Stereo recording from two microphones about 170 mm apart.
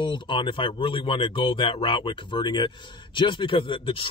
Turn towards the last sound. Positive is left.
turn(degrees=30)  # may be behind; listen again after turning